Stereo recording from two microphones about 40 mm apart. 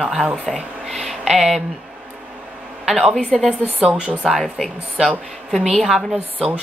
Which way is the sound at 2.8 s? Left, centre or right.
Centre.